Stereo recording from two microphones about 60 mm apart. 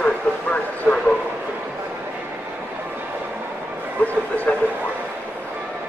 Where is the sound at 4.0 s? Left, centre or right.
Left.